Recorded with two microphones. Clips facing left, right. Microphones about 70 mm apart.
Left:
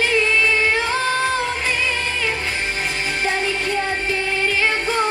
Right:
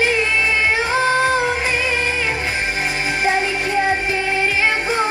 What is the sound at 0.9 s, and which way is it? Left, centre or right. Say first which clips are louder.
Music: right 4 dB; centre.